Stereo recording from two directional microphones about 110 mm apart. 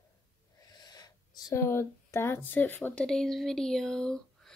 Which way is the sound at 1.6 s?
25° left (ahead or behind).